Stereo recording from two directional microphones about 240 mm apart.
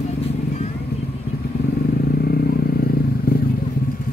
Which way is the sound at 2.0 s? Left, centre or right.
Left.